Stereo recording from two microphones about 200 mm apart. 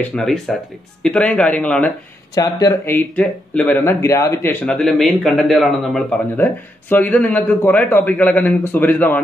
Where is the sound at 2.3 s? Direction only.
20° left (ahead or behind).